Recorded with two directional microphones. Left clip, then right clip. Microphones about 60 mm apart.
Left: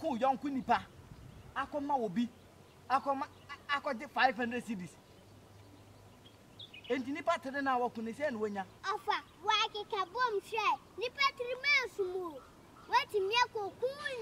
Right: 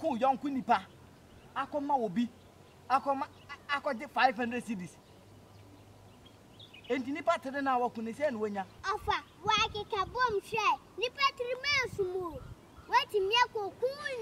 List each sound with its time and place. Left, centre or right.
0.0 s speech: centre
6.9 s speech: centre